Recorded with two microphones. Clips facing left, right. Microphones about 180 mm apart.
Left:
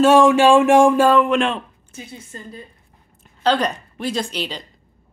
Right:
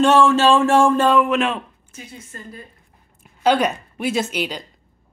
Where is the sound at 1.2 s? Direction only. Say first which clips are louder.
Left 1 dB; 5° right (ahead or behind).